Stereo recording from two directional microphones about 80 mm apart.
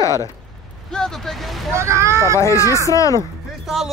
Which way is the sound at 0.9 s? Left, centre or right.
Centre.